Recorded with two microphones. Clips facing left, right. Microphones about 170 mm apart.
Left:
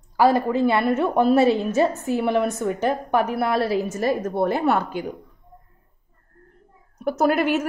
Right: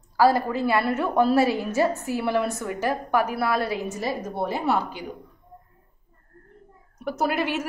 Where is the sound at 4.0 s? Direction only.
55° left (ahead or behind).